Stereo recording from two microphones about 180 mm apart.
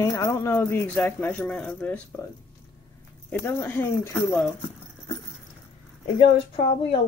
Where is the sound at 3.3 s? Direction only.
10° left (ahead or behind).